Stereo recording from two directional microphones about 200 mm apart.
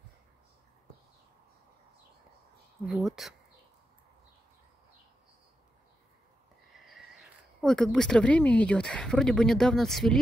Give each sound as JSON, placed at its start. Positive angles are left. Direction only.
{"t": 2.9, "sound": "speech", "side_deg": 0}
{"t": 6.7, "sound": "speech", "side_deg": 0}